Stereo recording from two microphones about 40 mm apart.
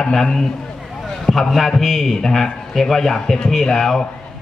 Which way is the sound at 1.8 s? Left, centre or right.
Centre.